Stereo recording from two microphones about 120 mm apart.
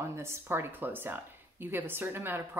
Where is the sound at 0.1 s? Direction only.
20° right (ahead or behind).